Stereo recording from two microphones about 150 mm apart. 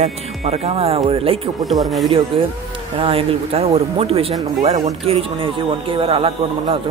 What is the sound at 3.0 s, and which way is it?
Speech, 40° right (ahead or behind).